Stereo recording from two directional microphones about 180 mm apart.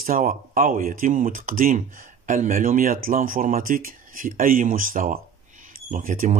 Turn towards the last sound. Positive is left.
turn(degrees=-45)  # may be behind; listen again after turning